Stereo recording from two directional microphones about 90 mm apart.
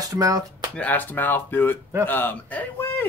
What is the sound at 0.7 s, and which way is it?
Speech, 20° left (ahead or behind).